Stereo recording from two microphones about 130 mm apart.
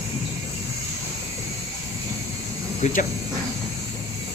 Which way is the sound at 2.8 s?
60° left (ahead or behind).